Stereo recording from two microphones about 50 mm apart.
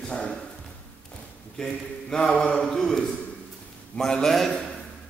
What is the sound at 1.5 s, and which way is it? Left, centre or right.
A man's voice, centre.